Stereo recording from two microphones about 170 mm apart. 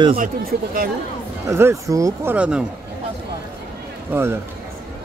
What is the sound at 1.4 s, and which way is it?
Speech, 15° right (ahead or behind).